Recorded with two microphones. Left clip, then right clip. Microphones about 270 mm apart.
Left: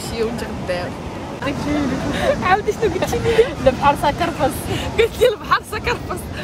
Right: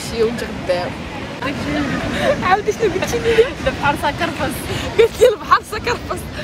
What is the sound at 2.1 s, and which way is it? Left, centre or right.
Speech, centre.